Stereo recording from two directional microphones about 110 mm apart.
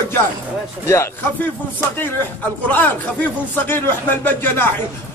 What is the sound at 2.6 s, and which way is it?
A man's voice, 15° left (ahead or behind).